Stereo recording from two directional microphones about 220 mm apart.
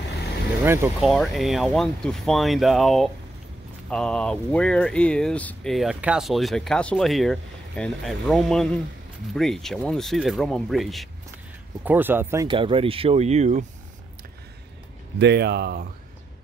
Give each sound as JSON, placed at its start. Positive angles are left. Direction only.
{"t": 0.7, "sound": "speech", "side_deg": -10}
{"t": 1.0, "sound": "speech", "side_deg": 0}
{"t": 12.4, "sound": "speech", "side_deg": -25}
{"t": 15.1, "sound": "speech", "side_deg": -50}